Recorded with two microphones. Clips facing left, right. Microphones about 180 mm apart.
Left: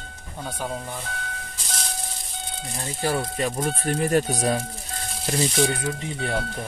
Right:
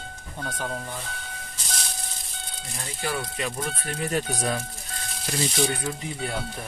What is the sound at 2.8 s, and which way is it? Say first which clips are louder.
Speech: left 5 dB; 40° left (ahead or behind).